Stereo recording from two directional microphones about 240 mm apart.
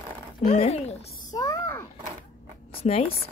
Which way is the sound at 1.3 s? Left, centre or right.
Centre.